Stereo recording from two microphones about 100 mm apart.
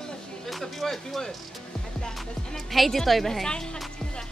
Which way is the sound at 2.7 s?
Centre (ahead or behind).